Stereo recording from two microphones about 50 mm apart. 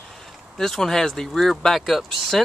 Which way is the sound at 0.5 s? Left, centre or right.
Centre.